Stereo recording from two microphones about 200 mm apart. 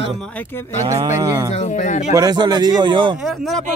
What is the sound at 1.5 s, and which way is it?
Speech, 35° left (ahead or behind).